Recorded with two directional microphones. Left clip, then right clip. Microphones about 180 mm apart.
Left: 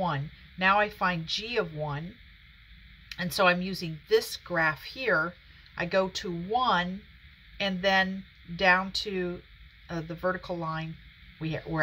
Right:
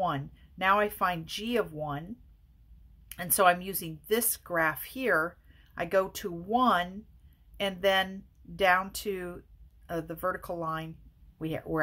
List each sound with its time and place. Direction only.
0.0 s speech: 55° right (ahead or behind)
3.1 s speech: 55° right (ahead or behind)